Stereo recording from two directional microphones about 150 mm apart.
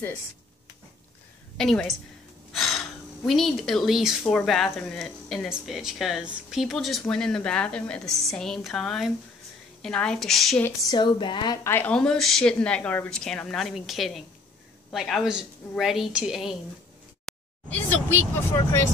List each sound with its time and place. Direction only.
1.6 s speech: 5° left (ahead or behind)
2.5 s gasp: centre (ahead or behind)
3.3 s speech: centre (ahead or behind)
10.9 s speech: 30° left (ahead or behind)
11.6 s speech: 15° left (ahead or behind); by 16.5 s 5° right (ahead or behind)
17.3 s a sound: 10° left (ahead or behind)
18.3 s speech: 15° left (ahead or behind)